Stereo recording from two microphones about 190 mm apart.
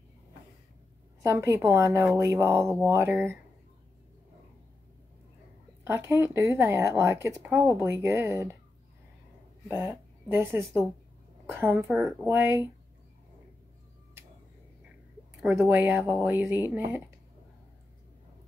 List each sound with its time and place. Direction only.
1.2 s speech: 15° right (ahead or behind)
5.9 s speech: 15° right (ahead or behind)
9.8 s speech: 10° right (ahead or behind)
15.4 s speech: 5° right (ahead or behind)